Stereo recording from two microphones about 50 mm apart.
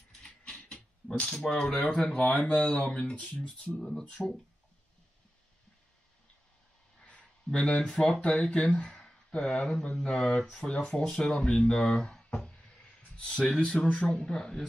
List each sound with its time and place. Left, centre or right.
0.2 s mechanisms: left
1.5 s speech: centre
7.0 s speech: centre
12.4 s a sound: centre
13.2 s speech: centre